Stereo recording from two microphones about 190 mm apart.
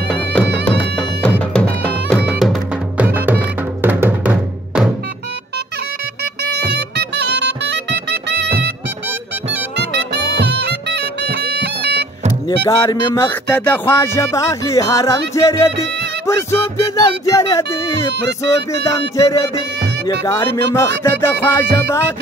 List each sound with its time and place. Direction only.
0.1 s music: 5° left (ahead or behind)
6.4 s music: 60° right (ahead or behind)
9.8 s music: 65° right (ahead or behind)
12.6 s music: 15° left (ahead or behind)